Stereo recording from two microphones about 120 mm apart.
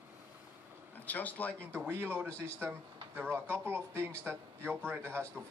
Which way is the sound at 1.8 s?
20° right (ahead or behind).